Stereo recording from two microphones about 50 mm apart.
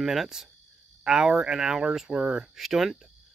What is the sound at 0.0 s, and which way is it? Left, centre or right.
Speech, centre.